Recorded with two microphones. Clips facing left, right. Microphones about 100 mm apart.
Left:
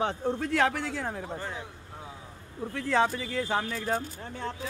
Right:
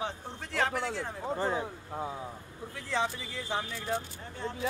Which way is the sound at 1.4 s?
35° right (ahead or behind).